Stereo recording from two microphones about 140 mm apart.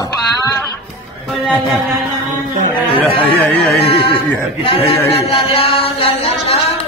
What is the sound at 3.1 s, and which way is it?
A man's voice, 40° left (ahead or behind).